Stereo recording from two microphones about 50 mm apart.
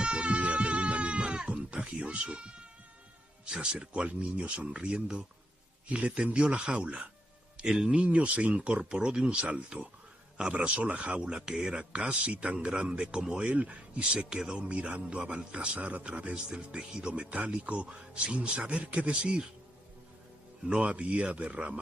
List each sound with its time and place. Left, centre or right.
0.0 s goat: centre
3.4 s a man's voice: centre
7.6 s music: centre
7.9 s a man's voice: right
11.3 s speech: centre
11.6 s a man's voice: right
20.6 s a man's voice: right